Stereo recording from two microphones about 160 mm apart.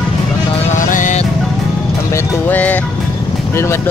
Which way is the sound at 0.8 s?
55° left (ahead or behind).